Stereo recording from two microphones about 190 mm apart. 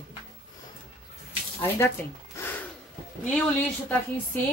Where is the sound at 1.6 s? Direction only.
10° left (ahead or behind).